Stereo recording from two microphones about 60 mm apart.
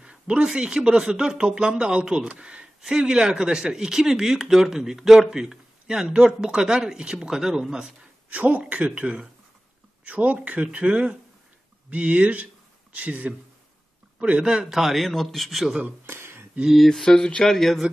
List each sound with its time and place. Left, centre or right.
0.0 s speech: centre
8.3 s a man's voice: right; by 15.8 s centre
16.1 s a sound: right
16.6 s speech: centre